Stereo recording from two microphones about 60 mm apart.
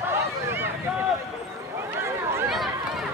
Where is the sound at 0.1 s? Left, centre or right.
Right.